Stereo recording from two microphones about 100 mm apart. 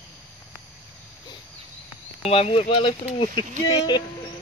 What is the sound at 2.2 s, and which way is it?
Speech, 80° left.